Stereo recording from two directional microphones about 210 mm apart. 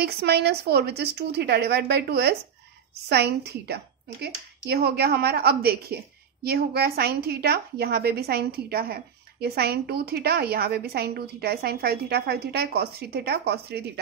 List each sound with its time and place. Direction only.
0.0 s a woman's voice: 50° right (ahead or behind)